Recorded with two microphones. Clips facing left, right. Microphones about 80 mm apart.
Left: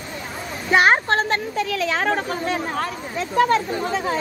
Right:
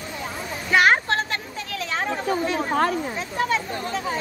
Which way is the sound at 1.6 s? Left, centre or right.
Left.